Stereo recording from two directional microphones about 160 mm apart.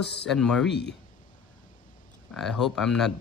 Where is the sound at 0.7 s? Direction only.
90° left.